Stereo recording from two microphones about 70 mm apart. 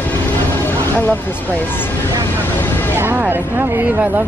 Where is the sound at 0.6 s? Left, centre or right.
Left.